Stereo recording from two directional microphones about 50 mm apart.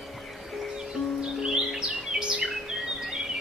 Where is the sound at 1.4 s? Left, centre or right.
Centre.